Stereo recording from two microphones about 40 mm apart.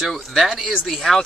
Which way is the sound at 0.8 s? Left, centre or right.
Centre.